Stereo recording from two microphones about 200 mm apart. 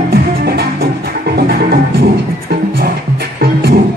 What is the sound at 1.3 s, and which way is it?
Music, 50° right (ahead or behind).